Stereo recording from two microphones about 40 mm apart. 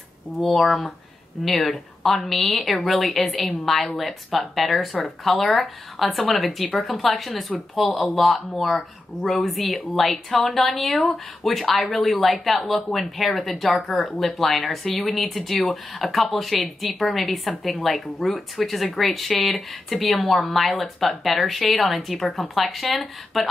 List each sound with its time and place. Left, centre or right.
0.4 s speech: centre
14.9 s speech: left
15.1 s speech: centre